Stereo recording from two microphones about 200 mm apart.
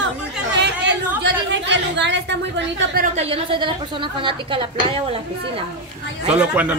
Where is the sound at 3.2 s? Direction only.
30° right (ahead or behind).